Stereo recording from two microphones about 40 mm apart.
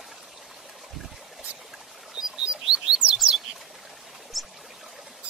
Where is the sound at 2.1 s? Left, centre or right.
Centre.